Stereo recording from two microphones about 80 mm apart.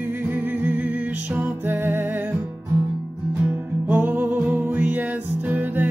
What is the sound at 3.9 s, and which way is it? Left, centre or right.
Music, right.